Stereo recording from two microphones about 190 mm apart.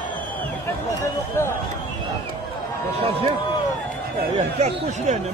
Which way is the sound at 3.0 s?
30° right (ahead or behind).